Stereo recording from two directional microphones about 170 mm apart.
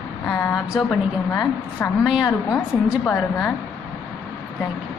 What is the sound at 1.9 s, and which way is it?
A woman's voice, 5° right (ahead or behind).